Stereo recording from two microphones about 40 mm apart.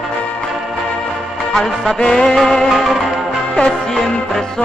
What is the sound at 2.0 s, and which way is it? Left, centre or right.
Music, centre.